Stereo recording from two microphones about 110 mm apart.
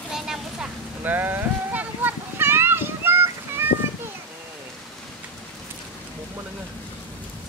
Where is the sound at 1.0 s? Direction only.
15° right (ahead or behind).